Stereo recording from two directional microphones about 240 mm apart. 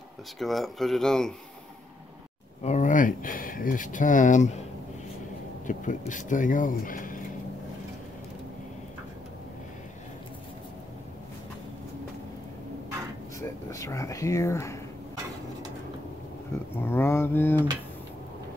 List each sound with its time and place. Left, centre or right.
0.4 s speech: centre
2.6 s speech: left
5.7 s speech: left
13.4 s speech: centre
16.8 s speech: centre